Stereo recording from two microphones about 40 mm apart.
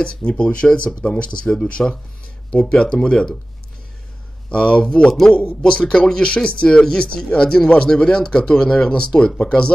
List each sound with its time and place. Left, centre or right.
0.0 s speech: left
4.5 s speech: left